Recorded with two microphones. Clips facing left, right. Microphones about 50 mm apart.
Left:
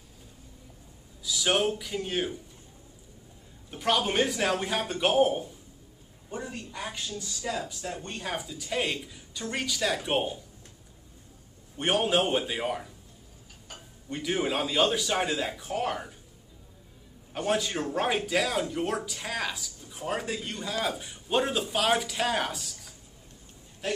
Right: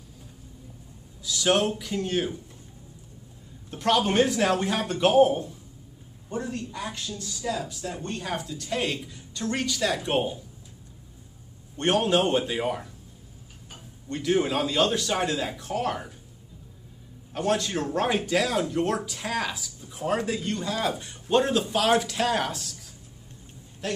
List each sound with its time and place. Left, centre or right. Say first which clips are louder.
1.2 s speech: right 3 dB; centre
3.7 s a woman's voice: right 4 dB; centre
11.7 s speech: right 3 dB; centre
14.0 s speech: right 5 dB; centre
17.3 s speech: right 2 dB; centre
23.8 s speech: right 1 dB; centre